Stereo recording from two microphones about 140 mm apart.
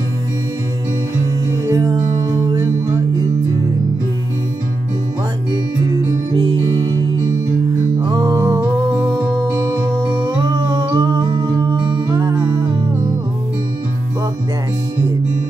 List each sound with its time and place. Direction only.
1.7 s music: 25° right (ahead or behind)
6.3 s music: 35° right (ahead or behind)